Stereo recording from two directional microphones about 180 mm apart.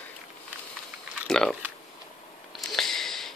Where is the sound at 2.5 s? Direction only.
Centre (ahead or behind).